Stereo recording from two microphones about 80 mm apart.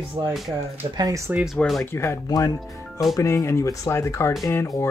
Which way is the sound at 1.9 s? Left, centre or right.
Left.